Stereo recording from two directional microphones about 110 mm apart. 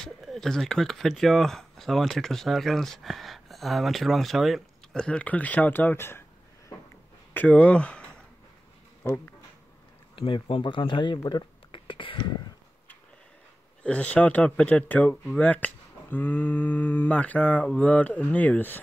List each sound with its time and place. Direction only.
0.0 s speech: centre (ahead or behind); by 6.2 s 20° left (ahead or behind)
7.3 s speech: 10° left (ahead or behind)
9.0 s speech: 20° left (ahead or behind)
10.1 s speech: 55° left (ahead or behind)
13.8 s speech: 10° left (ahead or behind)